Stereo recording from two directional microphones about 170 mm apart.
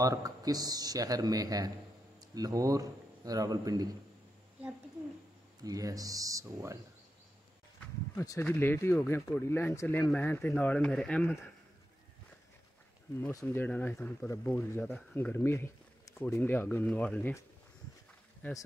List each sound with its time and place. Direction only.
0.0 s speech: 20° right (ahead or behind)
5.6 s speech: 20° right (ahead or behind)
7.8 s speech: 15° left (ahead or behind)
13.2 s speech: 15° left (ahead or behind)
18.4 s speech: 10° left (ahead or behind)